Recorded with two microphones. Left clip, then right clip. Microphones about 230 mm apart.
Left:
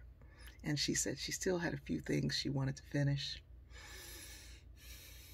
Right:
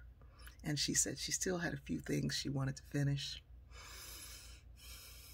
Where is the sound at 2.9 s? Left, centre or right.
Centre.